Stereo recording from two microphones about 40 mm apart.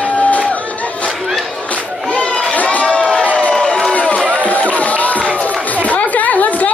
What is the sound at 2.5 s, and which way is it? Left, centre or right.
Run, left.